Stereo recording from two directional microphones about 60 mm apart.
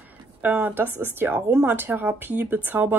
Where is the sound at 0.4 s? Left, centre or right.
Right.